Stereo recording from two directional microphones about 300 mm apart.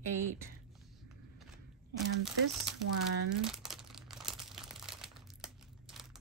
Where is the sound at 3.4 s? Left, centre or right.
Centre.